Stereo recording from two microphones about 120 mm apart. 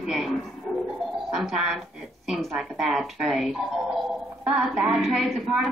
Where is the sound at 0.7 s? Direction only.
10° left (ahead or behind).